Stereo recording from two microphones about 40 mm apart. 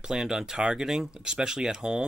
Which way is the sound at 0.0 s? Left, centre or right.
Centre.